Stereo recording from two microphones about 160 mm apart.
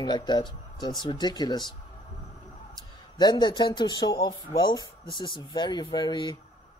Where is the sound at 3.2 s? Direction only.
30° left (ahead or behind).